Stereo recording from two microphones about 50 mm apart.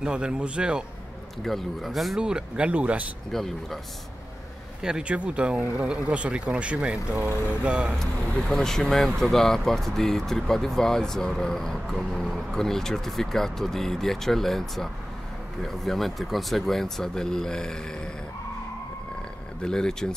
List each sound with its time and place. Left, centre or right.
0.0 s a man's voice: centre
1.4 s speech: centre
2.1 s speech: centre
3.3 s speech: centre
4.8 s speech: centre
8.0 s speech: centre
19.6 s speech: centre